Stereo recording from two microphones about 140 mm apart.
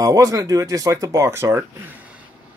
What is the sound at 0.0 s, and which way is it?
Speech, 25° right (ahead or behind).